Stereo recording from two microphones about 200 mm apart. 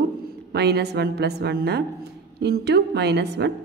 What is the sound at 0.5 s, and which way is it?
A woman's voice, 55° right (ahead or behind).